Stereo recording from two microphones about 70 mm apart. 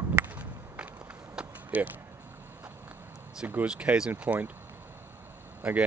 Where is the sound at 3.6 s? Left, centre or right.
Centre.